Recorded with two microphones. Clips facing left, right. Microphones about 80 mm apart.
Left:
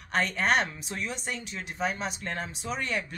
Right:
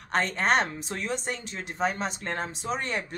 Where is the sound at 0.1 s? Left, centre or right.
Right.